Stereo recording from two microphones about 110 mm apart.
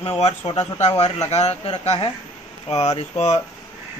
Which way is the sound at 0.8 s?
70° left (ahead or behind).